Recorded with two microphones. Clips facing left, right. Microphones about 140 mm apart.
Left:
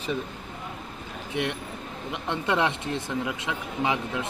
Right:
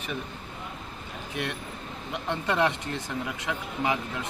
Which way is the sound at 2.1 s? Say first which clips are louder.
Left 2 dB; 20° left (ahead or behind).